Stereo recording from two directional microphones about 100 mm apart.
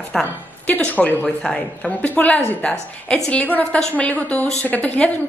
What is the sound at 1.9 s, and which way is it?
A woman's voice, 15° left (ahead or behind).